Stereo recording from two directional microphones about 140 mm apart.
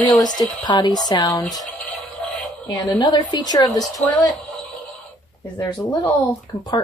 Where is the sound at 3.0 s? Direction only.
30° left (ahead or behind).